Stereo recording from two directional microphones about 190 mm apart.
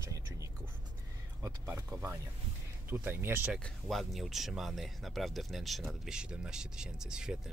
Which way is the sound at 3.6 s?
Centre (ahead or behind).